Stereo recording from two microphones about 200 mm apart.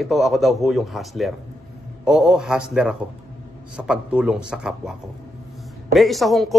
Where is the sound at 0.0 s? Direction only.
Centre (ahead or behind).